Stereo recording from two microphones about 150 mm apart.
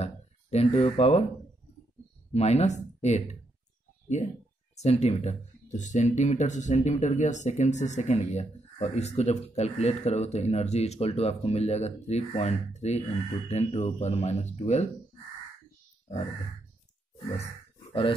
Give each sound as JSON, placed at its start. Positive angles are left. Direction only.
{"t": 0.0, "sound": "speech", "side_deg": 45}
{"t": 2.3, "sound": "speech", "side_deg": 45}
{"t": 4.7, "sound": "speech", "side_deg": 45}